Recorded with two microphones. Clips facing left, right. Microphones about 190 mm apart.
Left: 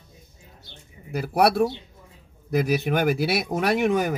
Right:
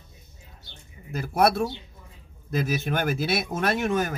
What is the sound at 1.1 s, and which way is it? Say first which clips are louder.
Speech: left 2 dB; 10° left (ahead or behind).